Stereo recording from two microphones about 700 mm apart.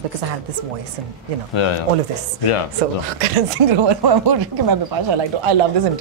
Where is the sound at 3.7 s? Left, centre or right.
Right.